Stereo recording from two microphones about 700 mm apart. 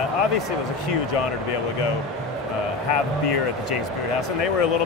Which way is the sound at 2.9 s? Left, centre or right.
Left.